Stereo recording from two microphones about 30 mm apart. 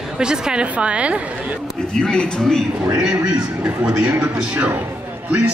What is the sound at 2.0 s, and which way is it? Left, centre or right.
Speech, left.